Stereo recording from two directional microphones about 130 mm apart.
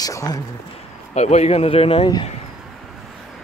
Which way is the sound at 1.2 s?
60° left (ahead or behind).